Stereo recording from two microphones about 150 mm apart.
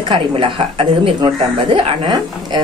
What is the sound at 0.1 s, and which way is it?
A woman's voice, 35° right (ahead or behind).